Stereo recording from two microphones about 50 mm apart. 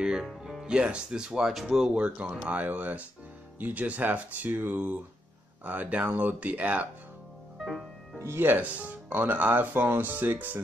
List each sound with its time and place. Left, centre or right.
0.0 s speech: centre
0.4 s music: centre
0.7 s speech: right
2.0 s speech: right
7.6 s music: centre
8.2 s speech: right
8.5 s speech: right